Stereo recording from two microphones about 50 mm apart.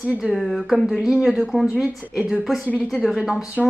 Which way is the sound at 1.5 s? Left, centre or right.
Left.